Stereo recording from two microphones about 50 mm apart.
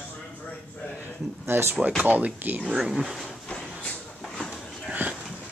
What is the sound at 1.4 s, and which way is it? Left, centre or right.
Speech, right.